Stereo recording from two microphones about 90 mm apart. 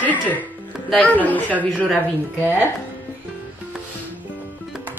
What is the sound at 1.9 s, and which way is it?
Speech, 20° right (ahead or behind).